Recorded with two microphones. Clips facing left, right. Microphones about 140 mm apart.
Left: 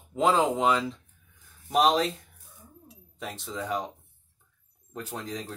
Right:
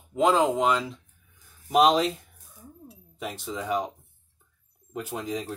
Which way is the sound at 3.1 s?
10° right (ahead or behind).